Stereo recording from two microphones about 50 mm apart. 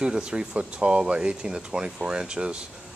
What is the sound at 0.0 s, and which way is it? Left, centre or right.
Speech, centre.